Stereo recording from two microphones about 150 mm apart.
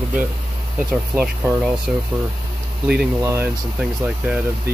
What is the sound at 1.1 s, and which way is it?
Speech, 15° right (ahead or behind).